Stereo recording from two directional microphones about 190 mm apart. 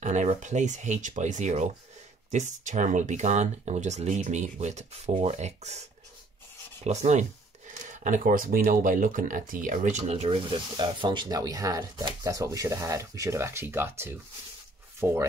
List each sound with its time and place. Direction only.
0.0 s speech: 40° right (ahead or behind); by 15.2 s 15° right (ahead or behind)